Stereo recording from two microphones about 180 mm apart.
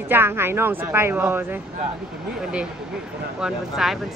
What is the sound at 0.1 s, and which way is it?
Speech, 10° right (ahead or behind).